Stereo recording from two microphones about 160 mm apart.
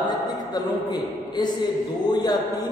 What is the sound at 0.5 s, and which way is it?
A man's voice, 25° left (ahead or behind).